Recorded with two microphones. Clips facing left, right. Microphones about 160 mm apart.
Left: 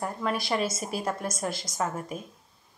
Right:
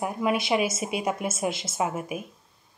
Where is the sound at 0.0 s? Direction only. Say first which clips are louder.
Right 4 dB; 10° right (ahead or behind).